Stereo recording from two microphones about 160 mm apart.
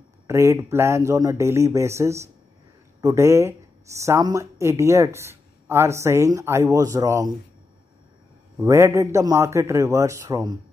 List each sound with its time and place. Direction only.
0.3 s speech: 20° right (ahead or behind)
8.5 s speech: 15° right (ahead or behind)